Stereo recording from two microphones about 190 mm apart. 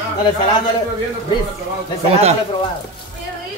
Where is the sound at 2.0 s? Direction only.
35° right (ahead or behind).